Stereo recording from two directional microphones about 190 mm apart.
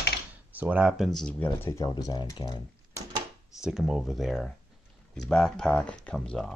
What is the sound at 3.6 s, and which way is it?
Speech, centre (ahead or behind).